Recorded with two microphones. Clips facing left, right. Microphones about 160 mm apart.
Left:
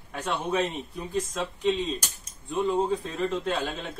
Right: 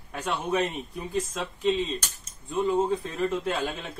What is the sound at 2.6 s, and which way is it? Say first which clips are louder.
Speech: right 1 dB; centre (ahead or behind).